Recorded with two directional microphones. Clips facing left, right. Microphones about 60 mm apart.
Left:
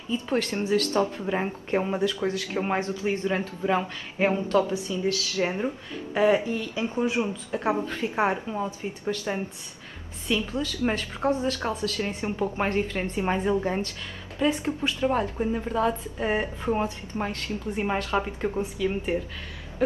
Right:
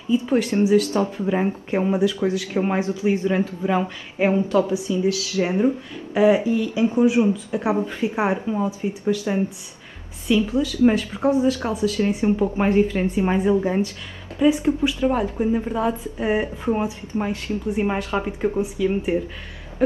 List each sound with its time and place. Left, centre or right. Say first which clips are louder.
0.1 s speech: right 7 dB; centre
3.6 s speech: right 3 dB; centre
12.4 s speech: right 3 dB; centre